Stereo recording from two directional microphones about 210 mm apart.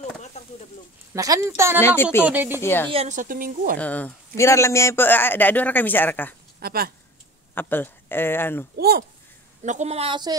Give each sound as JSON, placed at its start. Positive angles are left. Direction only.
{"t": 0.3, "sound": "a sound", "side_deg": 30}
{"t": 1.1, "sound": "speech", "side_deg": -15}
{"t": 1.8, "sound": "a man's voice", "side_deg": 10}
{"t": 2.2, "sound": "speech", "side_deg": -10}
{"t": 2.6, "sound": "a man's voice", "side_deg": 10}
{"t": 2.9, "sound": "a woman's voice", "side_deg": -30}
{"t": 3.7, "sound": "a man's voice", "side_deg": 5}
{"t": 6.6, "sound": "speech", "side_deg": -45}
{"t": 7.5, "sound": "a man's voice", "side_deg": 10}
{"t": 8.7, "sound": "speech", "side_deg": -45}
{"t": 9.6, "sound": "a woman's voice", "side_deg": -35}